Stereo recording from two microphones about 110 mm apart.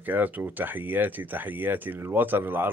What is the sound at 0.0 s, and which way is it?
Speech, 15° right (ahead or behind).